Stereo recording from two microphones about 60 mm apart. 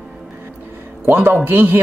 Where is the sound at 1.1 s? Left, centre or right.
Right.